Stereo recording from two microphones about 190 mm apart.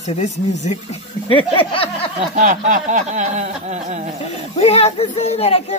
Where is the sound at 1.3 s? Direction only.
25° left (ahead or behind).